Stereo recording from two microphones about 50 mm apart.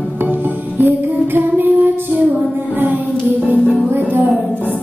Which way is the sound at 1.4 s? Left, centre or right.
Right.